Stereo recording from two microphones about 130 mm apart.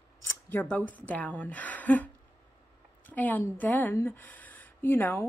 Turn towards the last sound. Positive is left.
turn(degrees=20)  # may be behind; listen again after turning